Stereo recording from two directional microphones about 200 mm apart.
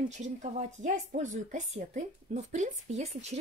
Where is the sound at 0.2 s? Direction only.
35° right (ahead or behind).